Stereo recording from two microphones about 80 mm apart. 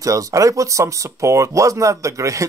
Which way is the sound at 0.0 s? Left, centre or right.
Right.